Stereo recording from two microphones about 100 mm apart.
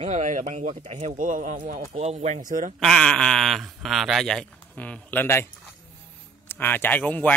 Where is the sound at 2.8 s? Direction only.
5° left (ahead or behind).